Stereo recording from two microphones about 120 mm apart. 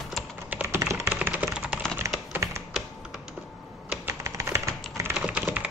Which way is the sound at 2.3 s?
25° right (ahead or behind).